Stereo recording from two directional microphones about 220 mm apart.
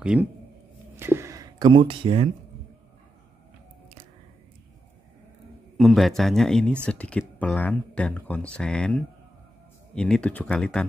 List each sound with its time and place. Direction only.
0.0 s speech: 5° right (ahead or behind)
0.9 s a sound: 10° right (ahead or behind)
5.8 s speech: centre (ahead or behind)